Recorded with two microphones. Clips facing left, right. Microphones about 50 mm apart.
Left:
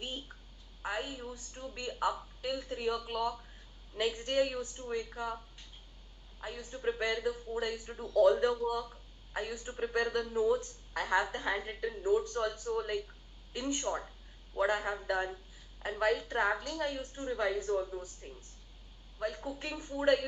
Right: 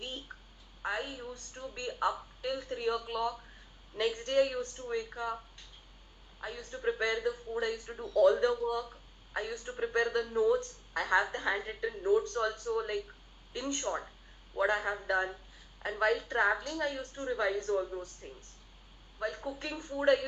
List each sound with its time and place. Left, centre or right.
0.3 s a sound: centre
0.8 s a woman's voice: centre
6.4 s a woman's voice: centre